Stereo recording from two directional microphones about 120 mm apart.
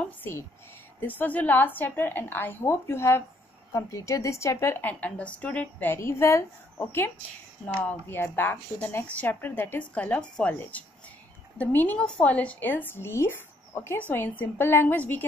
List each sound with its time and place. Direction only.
0.0 s a woman's voice: 20° left (ahead or behind)